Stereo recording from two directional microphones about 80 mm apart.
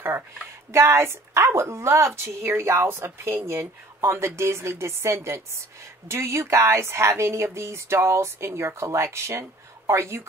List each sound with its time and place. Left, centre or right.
0.7 s speech: right